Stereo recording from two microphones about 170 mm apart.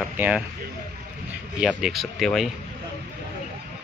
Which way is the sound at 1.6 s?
5° right (ahead or behind).